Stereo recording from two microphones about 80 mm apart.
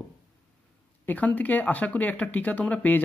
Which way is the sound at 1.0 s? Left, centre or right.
Left.